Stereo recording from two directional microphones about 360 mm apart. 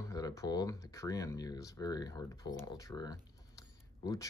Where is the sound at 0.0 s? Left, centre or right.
Centre.